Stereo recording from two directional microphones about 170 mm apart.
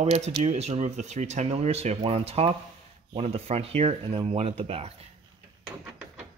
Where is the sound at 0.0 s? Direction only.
40° right (ahead or behind).